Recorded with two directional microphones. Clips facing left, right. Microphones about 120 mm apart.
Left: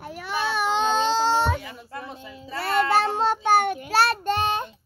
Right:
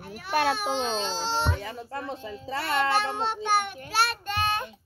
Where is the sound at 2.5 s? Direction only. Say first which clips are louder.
Left 4 dB; 40° left (ahead or behind).